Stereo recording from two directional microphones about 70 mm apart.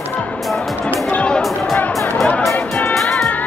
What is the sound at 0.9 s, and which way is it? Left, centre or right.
Music, left.